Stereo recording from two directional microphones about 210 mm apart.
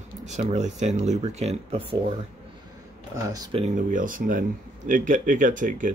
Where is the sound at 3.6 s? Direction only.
35° right (ahead or behind).